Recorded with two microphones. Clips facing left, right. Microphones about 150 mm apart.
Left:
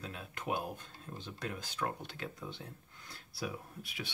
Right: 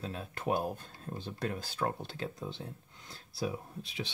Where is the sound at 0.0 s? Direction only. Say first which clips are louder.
Right 5 dB; 35° right (ahead or behind).